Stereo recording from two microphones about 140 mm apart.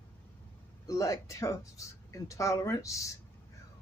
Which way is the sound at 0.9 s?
20° left (ahead or behind).